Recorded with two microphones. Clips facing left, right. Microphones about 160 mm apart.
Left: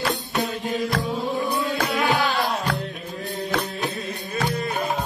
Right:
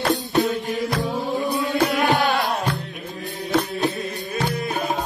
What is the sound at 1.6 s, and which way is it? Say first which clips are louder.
Music: right 3 dB; 40° right (ahead or behind).